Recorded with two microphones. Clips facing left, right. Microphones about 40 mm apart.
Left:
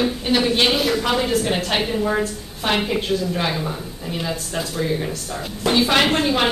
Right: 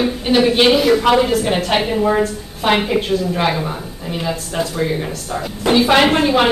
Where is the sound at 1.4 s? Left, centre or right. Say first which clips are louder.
Right 4 dB; centre.